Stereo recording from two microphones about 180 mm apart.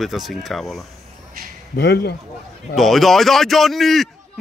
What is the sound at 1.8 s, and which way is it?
Speech, 65° left (ahead or behind).